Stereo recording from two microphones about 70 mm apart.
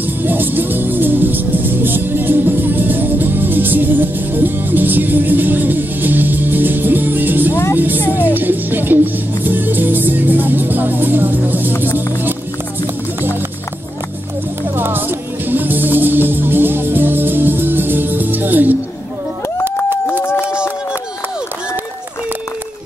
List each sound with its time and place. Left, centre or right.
0.0 s music: right
14.8 s music: right
20.1 s a sound: left